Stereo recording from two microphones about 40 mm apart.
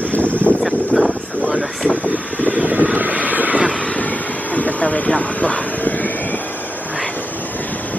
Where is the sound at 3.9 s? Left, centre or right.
Left.